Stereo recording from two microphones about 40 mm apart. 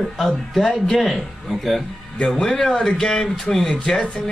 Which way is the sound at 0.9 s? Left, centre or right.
Centre.